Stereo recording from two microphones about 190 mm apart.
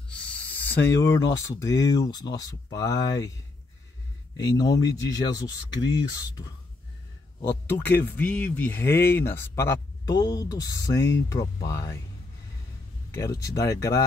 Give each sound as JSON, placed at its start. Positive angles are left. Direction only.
{"t": 0.1, "sound": "a sound", "side_deg": 5}
{"t": 0.9, "sound": "speech", "side_deg": 15}
{"t": 4.4, "sound": "speech", "side_deg": 20}
{"t": 8.0, "sound": "speech", "side_deg": 10}
{"t": 13.1, "sound": "speech", "side_deg": 15}